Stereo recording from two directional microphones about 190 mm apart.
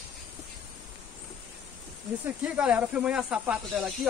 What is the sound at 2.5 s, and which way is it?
Speech, 5° right (ahead or behind).